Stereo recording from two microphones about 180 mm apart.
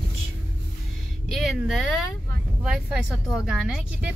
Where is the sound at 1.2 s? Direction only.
Centre (ahead or behind).